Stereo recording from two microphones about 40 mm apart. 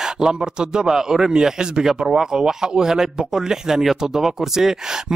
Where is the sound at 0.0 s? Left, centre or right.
Centre.